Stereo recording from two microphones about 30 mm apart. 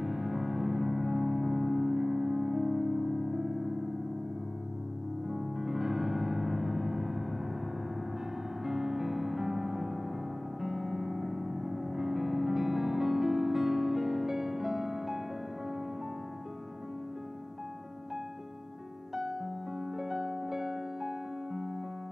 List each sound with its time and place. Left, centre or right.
0.0 s music: centre
5.3 s music: centre
8.6 s music: centre
19.1 s music: centre